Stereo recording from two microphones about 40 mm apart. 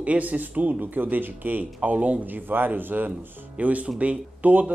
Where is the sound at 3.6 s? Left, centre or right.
Right.